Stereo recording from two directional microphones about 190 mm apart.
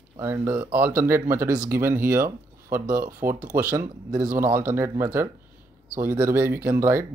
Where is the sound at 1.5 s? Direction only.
45° right (ahead or behind).